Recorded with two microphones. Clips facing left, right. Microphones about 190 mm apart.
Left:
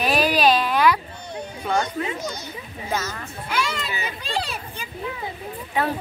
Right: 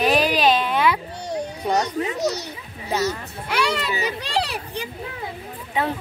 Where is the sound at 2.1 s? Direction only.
75° right (ahead or behind).